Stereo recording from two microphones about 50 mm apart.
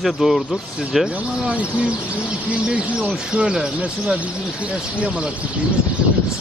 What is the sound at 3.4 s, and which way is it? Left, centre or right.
Speech, centre.